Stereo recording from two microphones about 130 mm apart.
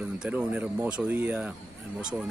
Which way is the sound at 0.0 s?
5° right (ahead or behind).